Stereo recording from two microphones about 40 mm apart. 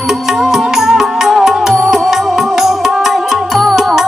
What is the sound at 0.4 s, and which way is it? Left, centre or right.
Music, centre.